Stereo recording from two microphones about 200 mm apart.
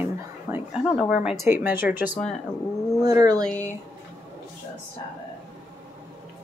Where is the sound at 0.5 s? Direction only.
15° right (ahead or behind).